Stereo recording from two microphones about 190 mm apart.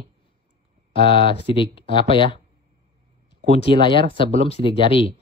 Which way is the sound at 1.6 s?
25° left (ahead or behind).